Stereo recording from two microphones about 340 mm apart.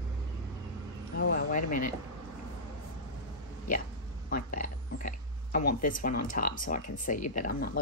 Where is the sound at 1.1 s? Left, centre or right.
Left.